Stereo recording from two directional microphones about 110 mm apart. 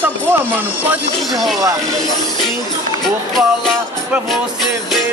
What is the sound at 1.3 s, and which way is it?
Music, centre (ahead or behind).